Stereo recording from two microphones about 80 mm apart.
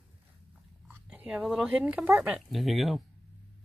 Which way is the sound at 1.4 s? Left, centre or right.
Centre.